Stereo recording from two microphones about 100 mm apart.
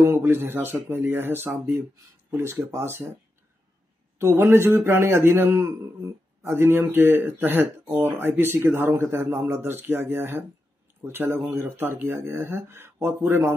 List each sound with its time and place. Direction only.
0.0 s a man's voice: 25° right (ahead or behind)
4.2 s a man's voice: 25° right (ahead or behind)